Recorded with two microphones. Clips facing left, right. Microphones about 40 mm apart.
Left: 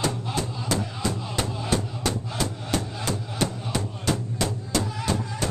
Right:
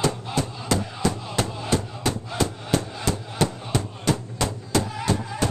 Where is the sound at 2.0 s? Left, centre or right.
Centre.